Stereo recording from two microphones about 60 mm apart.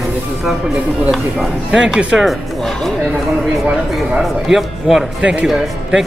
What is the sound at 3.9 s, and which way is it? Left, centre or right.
A man's voice, centre.